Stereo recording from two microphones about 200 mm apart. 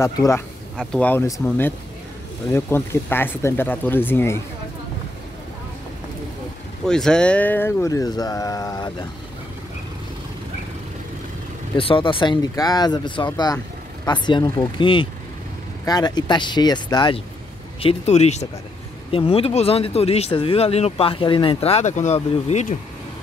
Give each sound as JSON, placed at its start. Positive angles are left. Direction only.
{"t": 0.0, "sound": "speech", "side_deg": 15}
{"t": 6.9, "sound": "speech", "side_deg": 5}
{"t": 11.7, "sound": "speech", "side_deg": 25}